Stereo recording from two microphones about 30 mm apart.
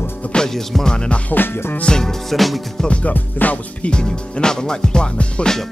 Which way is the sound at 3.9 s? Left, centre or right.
Left.